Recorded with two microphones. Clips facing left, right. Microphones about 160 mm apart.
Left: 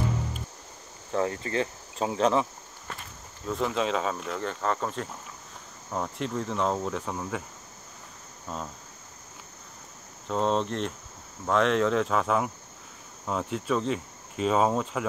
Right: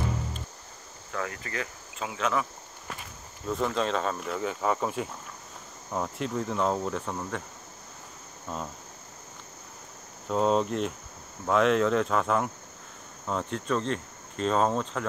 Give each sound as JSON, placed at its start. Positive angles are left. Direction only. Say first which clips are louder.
{"t": 1.1, "sound": "cricket", "louder": "left 7 dB", "side_deg": 30}
{"t": 3.4, "sound": "cricket", "louder": "even", "side_deg": 0}
{"t": 10.2, "sound": "cricket", "louder": "right 2 dB", "side_deg": -5}